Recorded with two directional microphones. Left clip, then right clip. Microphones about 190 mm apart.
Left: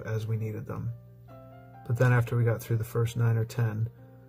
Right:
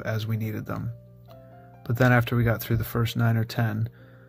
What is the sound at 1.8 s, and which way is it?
Speech, 25° right (ahead or behind).